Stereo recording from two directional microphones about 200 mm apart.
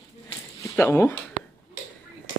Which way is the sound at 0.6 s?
15° left (ahead or behind).